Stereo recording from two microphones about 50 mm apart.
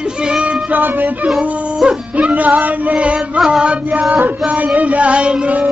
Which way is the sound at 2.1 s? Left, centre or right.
Right.